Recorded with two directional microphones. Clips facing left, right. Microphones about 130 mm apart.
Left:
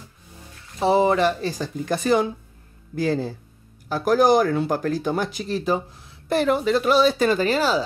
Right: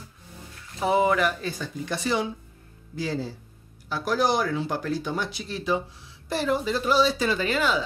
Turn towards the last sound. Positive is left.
turn(degrees=35)  # may be behind; listen again after turning